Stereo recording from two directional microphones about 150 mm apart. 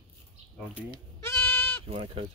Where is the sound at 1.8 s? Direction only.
40° right (ahead or behind).